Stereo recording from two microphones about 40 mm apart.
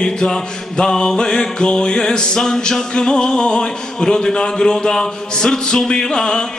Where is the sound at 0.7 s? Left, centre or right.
Centre.